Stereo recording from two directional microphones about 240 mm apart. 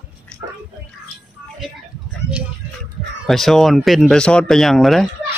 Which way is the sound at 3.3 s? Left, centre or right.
Centre.